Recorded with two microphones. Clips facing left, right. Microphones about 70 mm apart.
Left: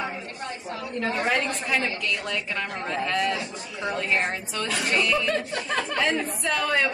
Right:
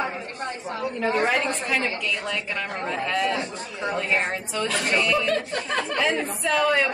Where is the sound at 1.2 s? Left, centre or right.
Centre.